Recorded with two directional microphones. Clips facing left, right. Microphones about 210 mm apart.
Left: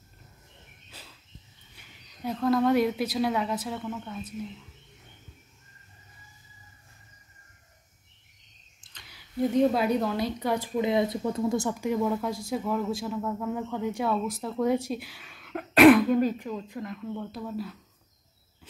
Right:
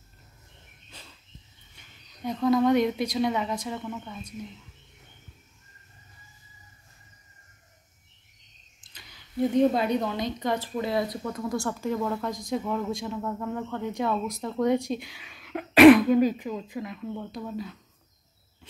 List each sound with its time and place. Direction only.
0.8 s cricket: 5° left (ahead or behind)
1.8 s a woman's voice: 5° left (ahead or behind)
9.1 s a woman's voice: centre (ahead or behind)